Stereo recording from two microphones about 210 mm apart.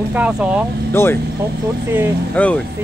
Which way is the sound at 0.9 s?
10° left (ahead or behind).